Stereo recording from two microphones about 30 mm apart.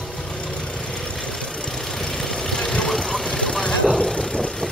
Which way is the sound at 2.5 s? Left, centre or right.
Left.